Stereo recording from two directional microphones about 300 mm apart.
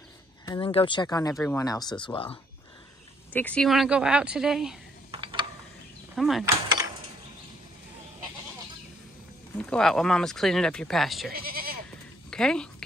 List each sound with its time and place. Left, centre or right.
0.5 s speech: centre
3.3 s speech: centre
5.1 s mechanisms: centre
6.1 s speech: centre
9.6 s speech: centre
11.3 s goat: right
12.3 s speech: centre